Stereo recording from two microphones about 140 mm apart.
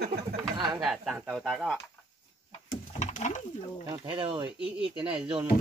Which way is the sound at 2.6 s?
60° left (ahead or behind).